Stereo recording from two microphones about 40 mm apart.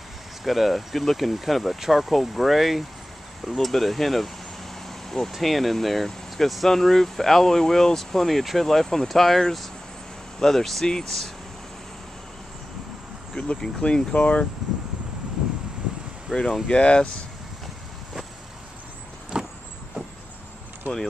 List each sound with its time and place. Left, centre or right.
0.4 s speech: centre
4.8 s vehicle: centre
5.4 s speech: centre
13.3 s speech: left
13.8 s speech: left
14.6 s a sound: centre
16.3 s speech: centre
16.6 s speech: left
19.3 s vehicle: right
20.9 s speech: right